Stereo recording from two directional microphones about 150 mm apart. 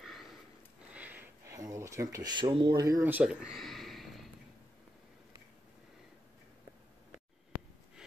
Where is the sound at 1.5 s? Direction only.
20° right (ahead or behind); by 4.3 s centre (ahead or behind).